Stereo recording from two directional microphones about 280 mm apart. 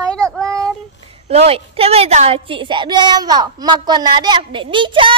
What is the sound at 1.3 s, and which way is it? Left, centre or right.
A woman's voice, right.